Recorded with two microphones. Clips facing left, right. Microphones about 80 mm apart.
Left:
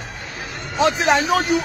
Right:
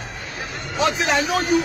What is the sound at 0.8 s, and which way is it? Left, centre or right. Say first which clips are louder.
Speech: left 3 dB; left.